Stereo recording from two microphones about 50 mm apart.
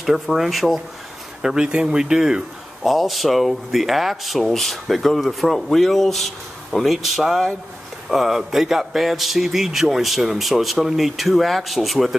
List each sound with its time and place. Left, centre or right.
0.0 s speech: centre
1.4 s speech: centre
2.8 s speech: centre